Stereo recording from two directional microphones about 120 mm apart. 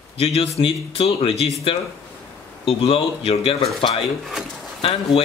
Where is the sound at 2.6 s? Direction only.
55° left (ahead or behind).